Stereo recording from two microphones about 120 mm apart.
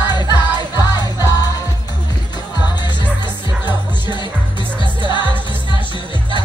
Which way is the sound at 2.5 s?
40° left (ahead or behind).